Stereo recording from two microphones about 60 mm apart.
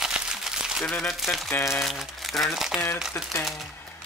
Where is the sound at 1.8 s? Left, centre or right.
Centre.